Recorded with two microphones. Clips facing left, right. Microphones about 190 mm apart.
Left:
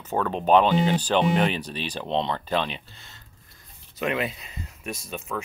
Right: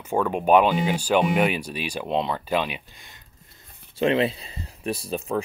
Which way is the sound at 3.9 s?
30° right (ahead or behind).